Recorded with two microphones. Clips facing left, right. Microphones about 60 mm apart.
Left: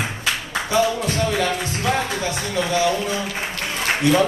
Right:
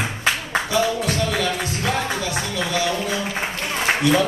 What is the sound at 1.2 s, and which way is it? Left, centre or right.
Music, left.